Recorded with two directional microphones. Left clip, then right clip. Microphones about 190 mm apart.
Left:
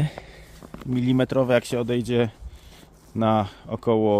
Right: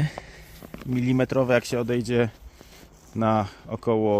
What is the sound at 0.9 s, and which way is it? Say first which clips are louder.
Speech: left 1 dB; centre (ahead or behind).